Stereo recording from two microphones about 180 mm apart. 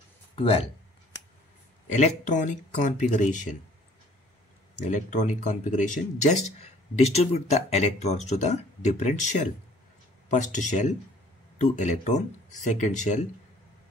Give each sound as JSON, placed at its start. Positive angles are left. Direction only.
{"t": 0.4, "sound": "speech", "side_deg": 35}
{"t": 1.9, "sound": "speech", "side_deg": 40}
{"t": 4.8, "sound": "speech", "side_deg": 45}